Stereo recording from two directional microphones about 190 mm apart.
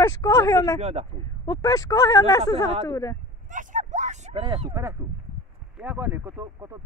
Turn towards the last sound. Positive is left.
turn(degrees=-10)  # may be behind; listen again after turning